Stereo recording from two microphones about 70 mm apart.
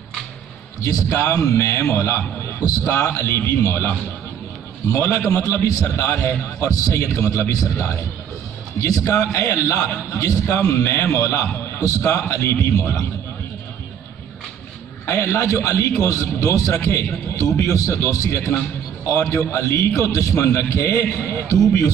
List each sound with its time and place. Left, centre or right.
0.8 s a man's voice: left
5.4 s a man's voice: left
15.0 s a man's voice: left